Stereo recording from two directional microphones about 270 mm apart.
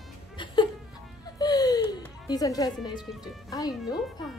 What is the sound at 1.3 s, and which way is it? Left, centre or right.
Music, centre.